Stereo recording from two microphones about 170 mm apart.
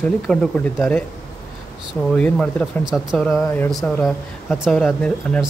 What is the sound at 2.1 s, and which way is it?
Speech, 5° left (ahead or behind).